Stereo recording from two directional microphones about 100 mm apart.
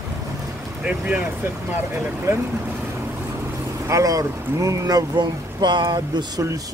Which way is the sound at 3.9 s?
35° right (ahead or behind).